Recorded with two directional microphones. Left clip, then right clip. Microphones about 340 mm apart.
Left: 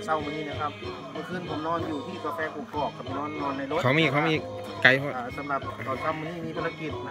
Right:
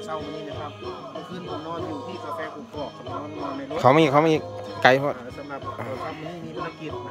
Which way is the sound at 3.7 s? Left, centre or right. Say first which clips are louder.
Right 7 dB; centre.